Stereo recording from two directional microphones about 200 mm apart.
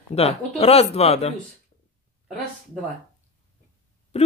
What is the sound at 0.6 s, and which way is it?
Speech, 30° left (ahead or behind).